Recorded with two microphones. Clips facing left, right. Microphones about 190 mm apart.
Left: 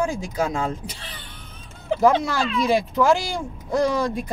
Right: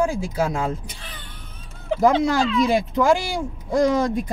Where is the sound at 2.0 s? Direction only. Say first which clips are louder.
Right 1 dB; 15° right (ahead or behind).